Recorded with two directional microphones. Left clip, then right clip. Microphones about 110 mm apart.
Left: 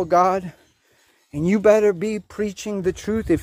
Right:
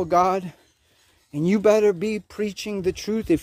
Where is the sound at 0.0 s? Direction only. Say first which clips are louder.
Left 2 dB; 5° left (ahead or behind).